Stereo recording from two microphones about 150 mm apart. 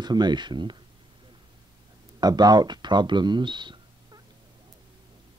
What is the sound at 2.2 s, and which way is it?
Speech, 25° right (ahead or behind).